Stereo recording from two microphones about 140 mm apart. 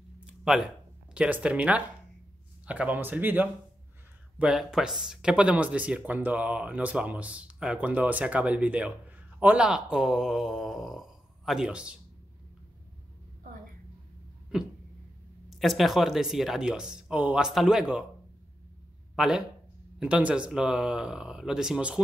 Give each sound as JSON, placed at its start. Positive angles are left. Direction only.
{"t": 0.2, "sound": "a sound", "side_deg": -5}
{"t": 1.1, "sound": "speech", "side_deg": -10}
{"t": 14.5, "sound": "speech", "side_deg": -5}
{"t": 19.1, "sound": "speech", "side_deg": -5}